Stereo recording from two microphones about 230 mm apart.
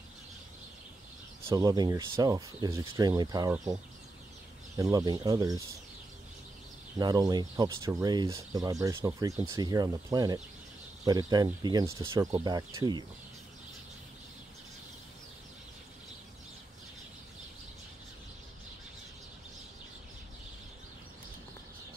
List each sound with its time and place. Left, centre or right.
1.5 s speech: centre
7.0 s speech: centre